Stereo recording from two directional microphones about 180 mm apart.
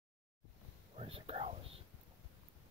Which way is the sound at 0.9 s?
30° right (ahead or behind).